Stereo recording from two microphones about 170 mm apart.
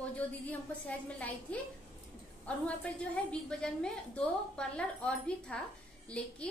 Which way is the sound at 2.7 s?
5° left (ahead or behind).